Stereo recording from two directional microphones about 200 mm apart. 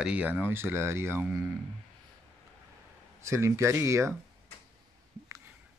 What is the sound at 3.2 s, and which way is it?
Speech, 15° right (ahead or behind).